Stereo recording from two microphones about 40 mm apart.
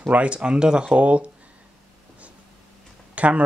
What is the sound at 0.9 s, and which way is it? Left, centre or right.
Speech, right.